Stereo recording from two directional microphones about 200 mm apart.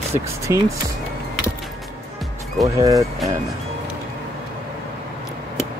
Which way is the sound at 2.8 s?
15° right (ahead or behind).